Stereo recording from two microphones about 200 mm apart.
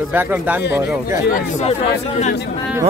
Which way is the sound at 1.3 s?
35° left (ahead or behind).